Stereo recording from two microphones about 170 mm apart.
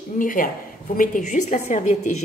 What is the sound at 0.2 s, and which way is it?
A woman's voice, 55° left (ahead or behind).